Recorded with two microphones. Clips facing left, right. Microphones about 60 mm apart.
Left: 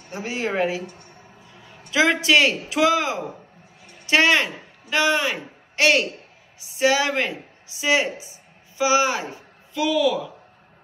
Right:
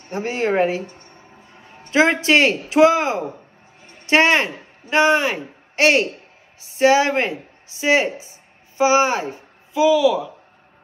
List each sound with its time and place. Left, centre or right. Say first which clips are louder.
0.1 s a man's voice: right 5 dB; right
0.8 s a woman's voice: left 1 dB; centre
1.5 s a sound: right 1 dB; right
1.9 s a man's voice: right 3 dB; right
9.8 s speech: right 5 dB; centre